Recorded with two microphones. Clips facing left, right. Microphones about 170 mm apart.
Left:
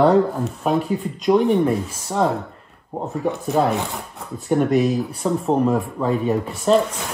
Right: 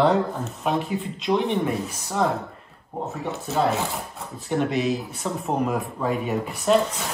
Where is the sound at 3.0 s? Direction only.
15° left (ahead or behind).